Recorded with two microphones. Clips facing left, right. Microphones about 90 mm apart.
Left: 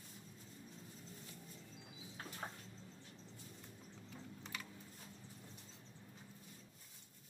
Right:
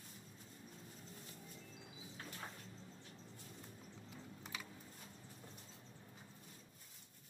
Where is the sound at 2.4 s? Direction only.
40° left (ahead or behind).